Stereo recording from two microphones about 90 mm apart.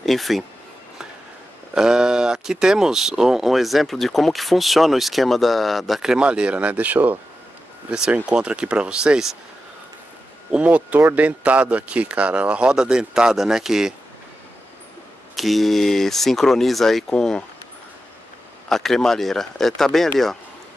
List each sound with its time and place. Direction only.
0.0 s speech: centre (ahead or behind)
1.7 s speech: 10° right (ahead or behind)
10.5 s speech: 15° right (ahead or behind)
15.3 s speech: centre (ahead or behind)
18.7 s speech: 5° left (ahead or behind)